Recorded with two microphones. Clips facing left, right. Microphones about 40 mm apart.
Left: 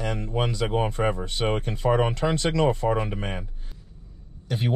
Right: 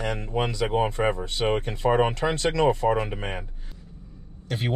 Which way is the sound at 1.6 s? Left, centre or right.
Right.